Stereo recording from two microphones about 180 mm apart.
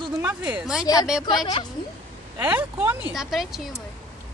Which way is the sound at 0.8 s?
20° left (ahead or behind).